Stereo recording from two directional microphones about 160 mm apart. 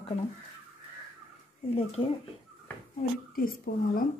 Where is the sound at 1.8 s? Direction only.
35° left (ahead or behind).